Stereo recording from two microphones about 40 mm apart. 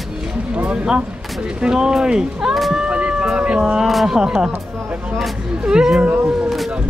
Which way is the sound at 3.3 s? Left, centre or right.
Right.